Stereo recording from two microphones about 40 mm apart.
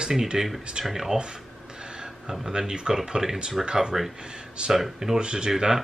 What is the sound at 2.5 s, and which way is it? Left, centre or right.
Speech, centre.